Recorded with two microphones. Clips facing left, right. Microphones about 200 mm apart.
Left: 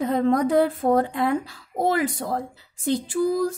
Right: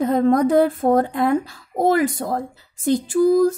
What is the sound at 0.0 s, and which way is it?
Speech, 45° right (ahead or behind).